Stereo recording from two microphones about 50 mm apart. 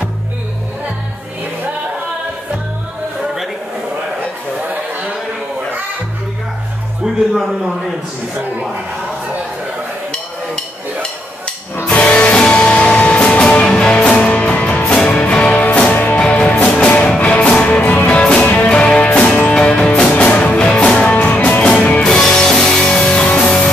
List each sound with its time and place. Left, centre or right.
10.1 s a sound: centre
11.9 s music: left
16.2 s music: left
17.6 s music: left
21.1 s music: left
21.6 s music: centre